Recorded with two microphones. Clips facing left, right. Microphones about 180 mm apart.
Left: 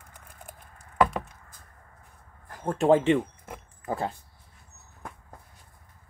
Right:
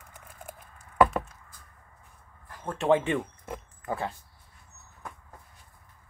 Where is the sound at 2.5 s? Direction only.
40° left (ahead or behind).